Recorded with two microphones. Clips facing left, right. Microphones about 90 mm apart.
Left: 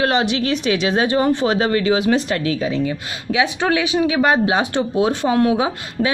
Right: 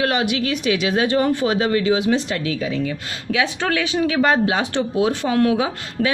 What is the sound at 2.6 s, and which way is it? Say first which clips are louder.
A woman's voice: left 3 dB; 25° left (ahead or behind).